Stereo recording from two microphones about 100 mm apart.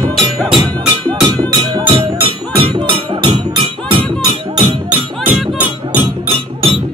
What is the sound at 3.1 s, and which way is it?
Music, 55° right (ahead or behind).